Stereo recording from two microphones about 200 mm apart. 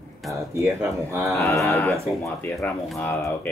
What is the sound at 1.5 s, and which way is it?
Speech, 15° left (ahead or behind).